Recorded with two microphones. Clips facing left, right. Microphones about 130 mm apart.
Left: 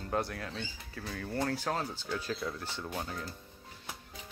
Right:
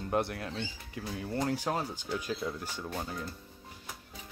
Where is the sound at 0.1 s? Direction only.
20° right (ahead or behind); by 3.3 s 5° right (ahead or behind).